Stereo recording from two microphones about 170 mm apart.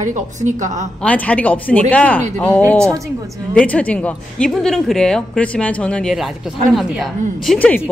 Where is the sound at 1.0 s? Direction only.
10° left (ahead or behind).